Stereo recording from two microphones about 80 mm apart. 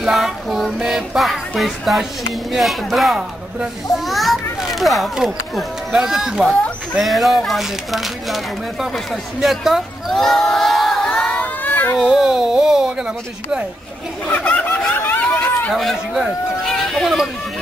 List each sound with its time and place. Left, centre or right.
0.0 s music: centre
2.5 s speech: centre
3.2 s speech: centre
4.0 s a child's voice: centre
11.4 s baby cry: left
12.0 s speech: centre
14.2 s speech: centre
15.3 s chatter: left
15.7 s speech: centre